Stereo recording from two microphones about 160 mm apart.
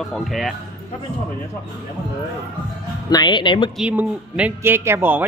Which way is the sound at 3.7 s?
5° right (ahead or behind).